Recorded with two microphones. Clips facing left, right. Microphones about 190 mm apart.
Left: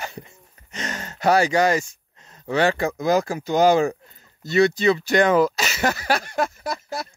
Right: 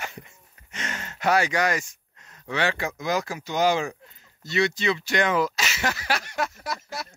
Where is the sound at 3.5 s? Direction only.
40° left (ahead or behind).